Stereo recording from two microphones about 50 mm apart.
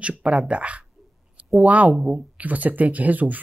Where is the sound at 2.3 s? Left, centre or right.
Right.